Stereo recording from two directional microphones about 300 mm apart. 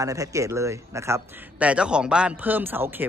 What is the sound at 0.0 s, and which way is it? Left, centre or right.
Speech, centre.